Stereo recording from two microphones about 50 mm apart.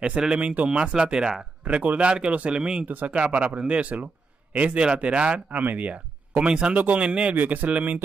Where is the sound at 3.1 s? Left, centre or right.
Right.